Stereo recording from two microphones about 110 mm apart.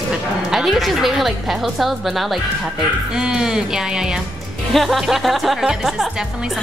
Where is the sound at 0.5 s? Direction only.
Centre (ahead or behind).